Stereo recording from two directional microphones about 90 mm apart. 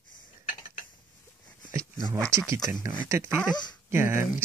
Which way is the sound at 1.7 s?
30° right (ahead or behind).